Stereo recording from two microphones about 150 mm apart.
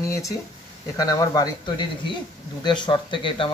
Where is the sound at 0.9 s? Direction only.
25° left (ahead or behind).